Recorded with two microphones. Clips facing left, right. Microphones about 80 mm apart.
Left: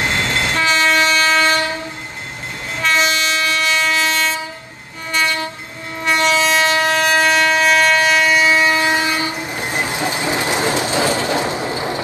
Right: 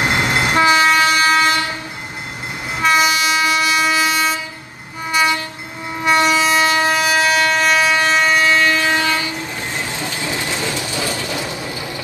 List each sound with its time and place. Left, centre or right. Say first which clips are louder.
0.0 s train: right 2 dB; centre
2.8 s train: right 2 dB; centre
6.0 s train: right 1 dB; centre; by 12.0 s left